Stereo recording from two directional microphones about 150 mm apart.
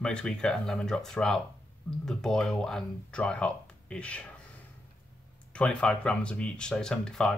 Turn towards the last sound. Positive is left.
turn(degrees=5)  # may be behind; listen again after turning